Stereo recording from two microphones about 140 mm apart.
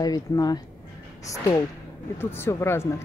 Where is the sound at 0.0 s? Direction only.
30° left (ahead or behind).